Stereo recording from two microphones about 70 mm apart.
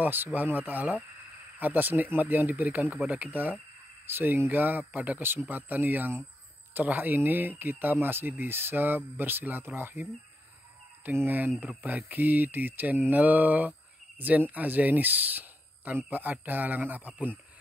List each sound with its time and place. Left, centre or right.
0.0 s speech: right
11.1 s speech: right